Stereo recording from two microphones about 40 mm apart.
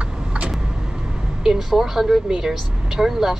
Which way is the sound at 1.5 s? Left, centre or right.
Centre.